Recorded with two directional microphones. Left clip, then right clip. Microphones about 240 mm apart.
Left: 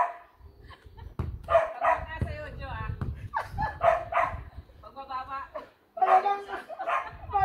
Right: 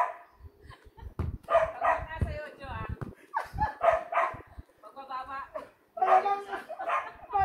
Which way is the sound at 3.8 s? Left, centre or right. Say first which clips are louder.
Left 2 dB; left.